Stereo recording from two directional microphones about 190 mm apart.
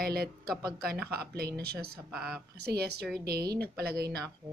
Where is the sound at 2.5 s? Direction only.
55° right (ahead or behind).